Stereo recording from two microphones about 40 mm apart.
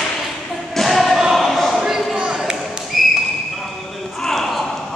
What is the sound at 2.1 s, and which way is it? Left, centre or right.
Basketball bounce, right.